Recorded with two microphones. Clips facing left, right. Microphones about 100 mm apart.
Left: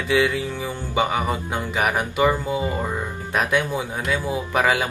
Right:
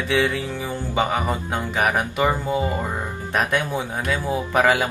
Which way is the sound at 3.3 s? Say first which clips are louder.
Left 1 dB; 5° left (ahead or behind).